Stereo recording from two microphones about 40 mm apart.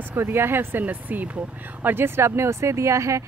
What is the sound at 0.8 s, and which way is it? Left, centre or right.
Speech, right.